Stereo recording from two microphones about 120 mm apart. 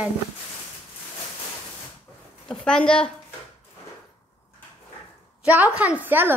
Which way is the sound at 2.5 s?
5° left (ahead or behind).